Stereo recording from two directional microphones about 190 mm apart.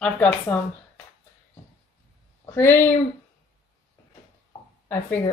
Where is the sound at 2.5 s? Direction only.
10° left (ahead or behind).